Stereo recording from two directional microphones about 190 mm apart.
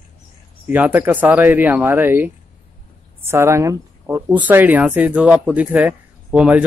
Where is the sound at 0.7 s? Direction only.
10° right (ahead or behind).